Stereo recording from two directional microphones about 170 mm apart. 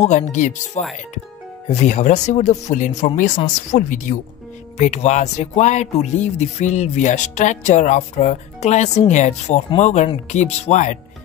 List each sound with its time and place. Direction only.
0.0 s speech: 45° left (ahead or behind)